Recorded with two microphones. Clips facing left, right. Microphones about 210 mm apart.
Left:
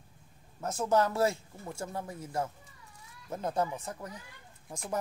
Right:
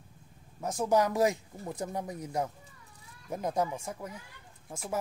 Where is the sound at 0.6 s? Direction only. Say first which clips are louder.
Right 1 dB; 15° right (ahead or behind).